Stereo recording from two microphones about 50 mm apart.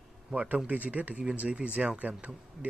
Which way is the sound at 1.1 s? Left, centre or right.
Centre.